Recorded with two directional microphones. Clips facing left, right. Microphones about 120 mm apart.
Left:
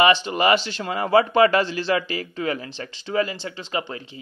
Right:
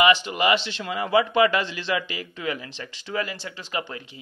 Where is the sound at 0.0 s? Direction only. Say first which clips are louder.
Left 2 dB; 35° left (ahead or behind).